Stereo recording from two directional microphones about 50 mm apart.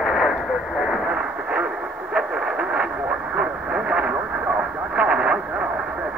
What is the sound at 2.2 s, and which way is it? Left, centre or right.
Radio, right.